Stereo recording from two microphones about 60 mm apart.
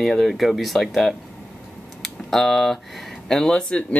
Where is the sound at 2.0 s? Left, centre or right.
Centre.